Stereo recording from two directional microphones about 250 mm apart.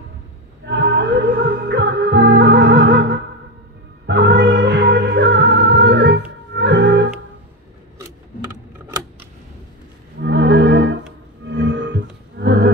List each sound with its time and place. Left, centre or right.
0.7 s music: right
10.2 s music: right